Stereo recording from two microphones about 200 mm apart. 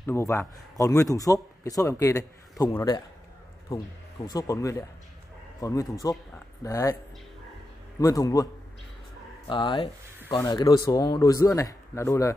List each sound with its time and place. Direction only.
0.0 s a man's voice: 15° left (ahead or behind)
4.3 s a man's voice: 15° left (ahead or behind)
8.0 s a man's voice: 15° left (ahead or behind)
9.5 s a man's voice: 25° left (ahead or behind)